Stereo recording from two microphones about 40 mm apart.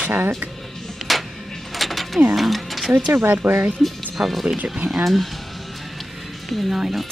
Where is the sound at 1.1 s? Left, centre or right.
Centre.